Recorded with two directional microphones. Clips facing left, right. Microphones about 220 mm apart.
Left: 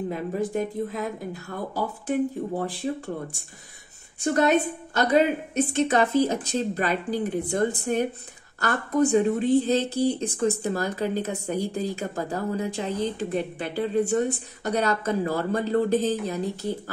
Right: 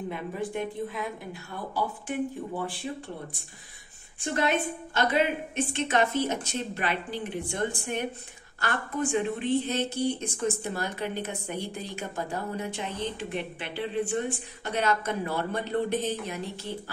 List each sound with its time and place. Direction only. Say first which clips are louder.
0.1 s a woman's voice: left 5 dB; 40° left (ahead or behind)
4.2 s a woman's voice: left 6 dB; 40° left (ahead or behind)